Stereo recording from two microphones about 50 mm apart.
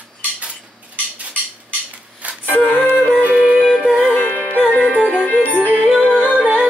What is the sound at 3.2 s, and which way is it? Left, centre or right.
Music, right.